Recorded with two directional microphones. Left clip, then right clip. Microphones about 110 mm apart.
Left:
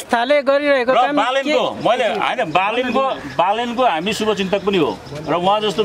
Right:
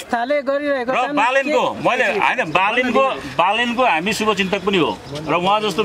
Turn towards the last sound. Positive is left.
turn(degrees=0)  # may be behind; listen again after turning